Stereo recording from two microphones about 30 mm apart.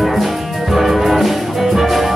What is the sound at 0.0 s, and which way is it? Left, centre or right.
Music, centre.